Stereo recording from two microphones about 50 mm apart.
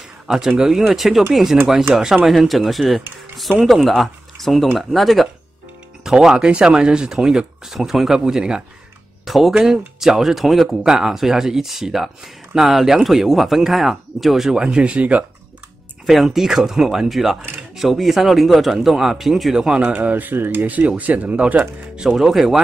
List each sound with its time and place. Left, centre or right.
0.6 s speech: centre
1.9 s speech: centre
2.2 s speech: centre
6.0 s speech: centre
9.2 s a sound: centre
9.6 s speech: centre; by 15.2 s right
16.3 s speech: centre
19.5 s speech: centre
19.9 s speech: right
20.6 s speech: right
22.0 s speech: centre